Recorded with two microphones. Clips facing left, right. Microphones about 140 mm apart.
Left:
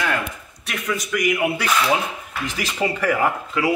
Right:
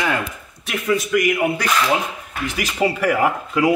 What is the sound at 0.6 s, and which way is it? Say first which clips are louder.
Speech: right 6 dB; 5° right (ahead or behind).